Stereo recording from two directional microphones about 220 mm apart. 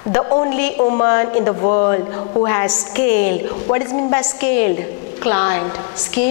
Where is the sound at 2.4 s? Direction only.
20° left (ahead or behind).